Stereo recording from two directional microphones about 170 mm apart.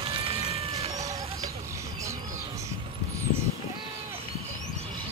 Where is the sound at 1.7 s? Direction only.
15° right (ahead or behind).